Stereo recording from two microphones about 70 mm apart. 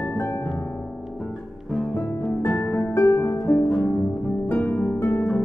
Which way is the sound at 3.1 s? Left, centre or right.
Left.